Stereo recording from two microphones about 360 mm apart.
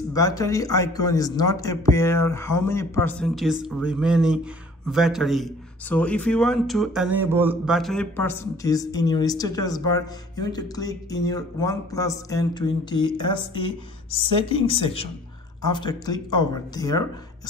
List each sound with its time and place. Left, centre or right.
0.1 s a man's voice: centre
15.6 s a man's voice: centre